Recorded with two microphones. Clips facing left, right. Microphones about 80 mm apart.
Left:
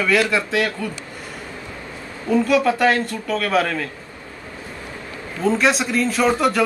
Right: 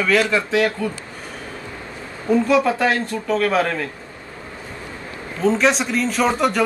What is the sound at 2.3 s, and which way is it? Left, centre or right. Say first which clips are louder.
A man's voice: right 1 dB; right.